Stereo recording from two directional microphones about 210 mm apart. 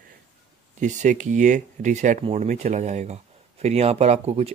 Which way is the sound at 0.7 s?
35° right (ahead or behind).